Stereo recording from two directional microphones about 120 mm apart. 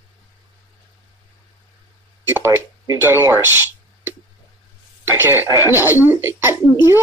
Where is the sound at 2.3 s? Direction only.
20° right (ahead or behind).